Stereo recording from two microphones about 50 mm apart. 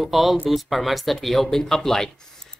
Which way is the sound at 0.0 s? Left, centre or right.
Centre.